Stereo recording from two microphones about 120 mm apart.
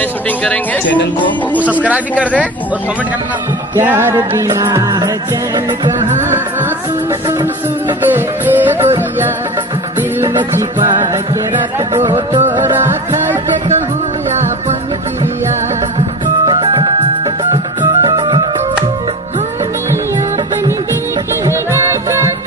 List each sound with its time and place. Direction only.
0.4 s speech: 10° left (ahead or behind)
1.6 s music: 10° right (ahead or behind)
3.7 s music: 20° right (ahead or behind)
8.0 s music: 15° right (ahead or behind)
11.9 s music: 35° right (ahead or behind)
12.7 s music: 15° right (ahead or behind)
16.4 s music: 35° right (ahead or behind)
18.0 s music: 40° right (ahead or behind)
21.5 s music: 20° right (ahead or behind)